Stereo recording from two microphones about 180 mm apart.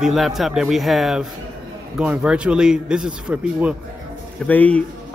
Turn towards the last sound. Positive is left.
turn(degrees=5)  # may be behind; listen again after turning